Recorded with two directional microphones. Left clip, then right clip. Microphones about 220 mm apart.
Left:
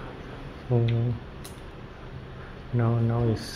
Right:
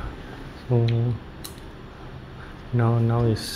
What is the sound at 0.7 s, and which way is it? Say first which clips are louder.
Speech: right 3 dB; 10° right (ahead or behind).